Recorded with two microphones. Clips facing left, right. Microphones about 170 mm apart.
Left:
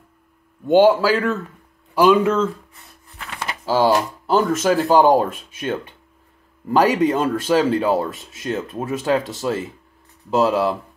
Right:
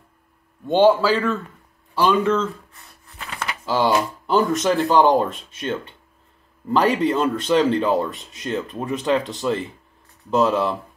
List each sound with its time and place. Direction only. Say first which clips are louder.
0.7 s speech: left 2 dB; 5° left (ahead or behind)
3.4 s a sound: left 3 dB; 40° left (ahead or behind)
4.5 s speech: left 2 dB; 5° left (ahead or behind)